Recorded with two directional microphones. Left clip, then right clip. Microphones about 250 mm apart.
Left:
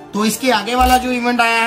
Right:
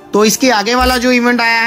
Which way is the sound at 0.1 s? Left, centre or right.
Centre.